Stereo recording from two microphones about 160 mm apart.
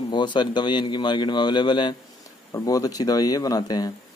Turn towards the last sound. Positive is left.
turn(degrees=25)  # may be behind; listen again after turning